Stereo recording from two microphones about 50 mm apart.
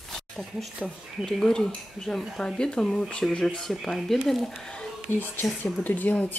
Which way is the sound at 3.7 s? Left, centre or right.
Centre.